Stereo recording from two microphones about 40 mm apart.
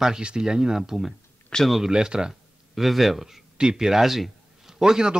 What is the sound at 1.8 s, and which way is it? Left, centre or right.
Speech, centre.